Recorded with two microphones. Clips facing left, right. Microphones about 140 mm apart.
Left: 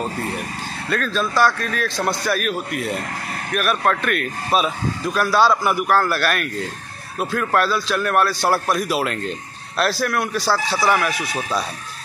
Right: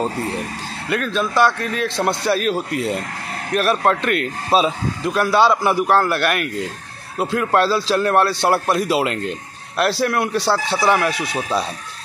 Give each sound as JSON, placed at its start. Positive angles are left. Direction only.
{"t": 0.8, "sound": "a man's voice", "side_deg": -15}